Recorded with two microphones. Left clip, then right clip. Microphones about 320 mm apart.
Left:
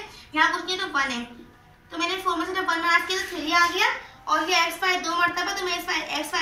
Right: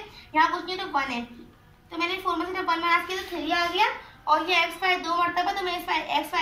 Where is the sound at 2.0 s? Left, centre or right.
Centre.